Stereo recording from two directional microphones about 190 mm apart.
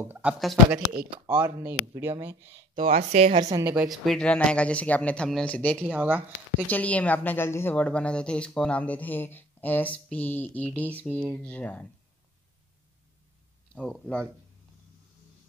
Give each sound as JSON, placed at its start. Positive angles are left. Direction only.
{"t": 0.0, "sound": "speech", "side_deg": -10}
{"t": 2.8, "sound": "speech", "side_deg": -45}
{"t": 3.3, "sound": "speech", "side_deg": -15}
{"t": 3.9, "sound": "speech", "side_deg": 0}
{"t": 5.9, "sound": "speech", "side_deg": -10}
{"t": 6.7, "sound": "a woman's voice", "side_deg": 5}
{"t": 13.7, "sound": "speech", "side_deg": 5}